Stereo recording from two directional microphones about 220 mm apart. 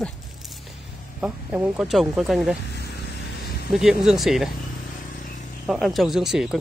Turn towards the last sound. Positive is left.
turn(degrees=0)  # may be behind; listen again after turning